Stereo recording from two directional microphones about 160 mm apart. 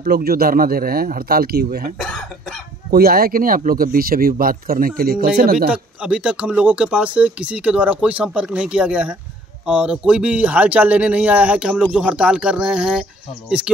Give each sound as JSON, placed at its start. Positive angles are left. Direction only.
{"t": 0.0, "sound": "speech", "side_deg": -75}
{"t": 2.0, "sound": "speech", "side_deg": 0}
{"t": 2.9, "sound": "speech", "side_deg": -75}
{"t": 5.7, "sound": "speech", "side_deg": -5}